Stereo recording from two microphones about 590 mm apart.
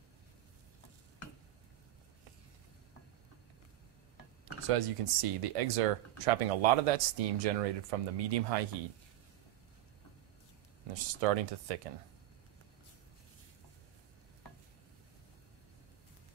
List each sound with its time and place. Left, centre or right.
4.6 s speech: right
10.9 s speech: right